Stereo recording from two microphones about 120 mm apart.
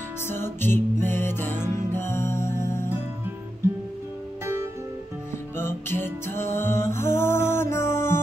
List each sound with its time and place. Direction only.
0.3 s music: 20° left (ahead or behind)
5.6 s music: 20° left (ahead or behind)